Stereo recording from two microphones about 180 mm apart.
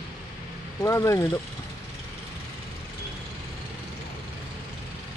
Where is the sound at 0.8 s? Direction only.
15° left (ahead or behind).